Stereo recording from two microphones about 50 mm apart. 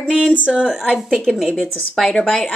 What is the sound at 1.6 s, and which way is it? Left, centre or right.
Speech, centre.